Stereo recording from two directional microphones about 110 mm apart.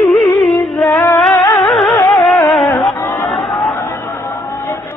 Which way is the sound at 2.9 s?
15° left (ahead or behind).